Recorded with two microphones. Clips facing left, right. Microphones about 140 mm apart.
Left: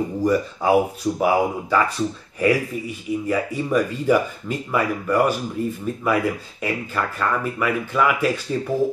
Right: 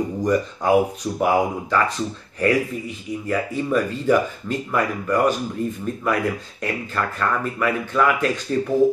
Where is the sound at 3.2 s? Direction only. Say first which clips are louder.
Right 2 dB; 10° left (ahead or behind).